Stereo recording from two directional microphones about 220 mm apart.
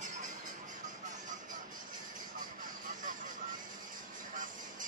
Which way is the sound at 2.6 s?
35° right (ahead or behind).